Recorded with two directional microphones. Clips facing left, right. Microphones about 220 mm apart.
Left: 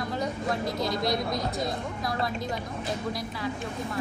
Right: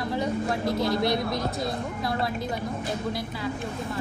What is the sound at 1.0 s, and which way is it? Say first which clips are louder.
Speech: right 2 dB; 25° right (ahead or behind).